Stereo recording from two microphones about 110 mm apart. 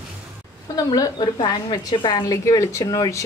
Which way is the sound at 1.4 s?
50° left (ahead or behind).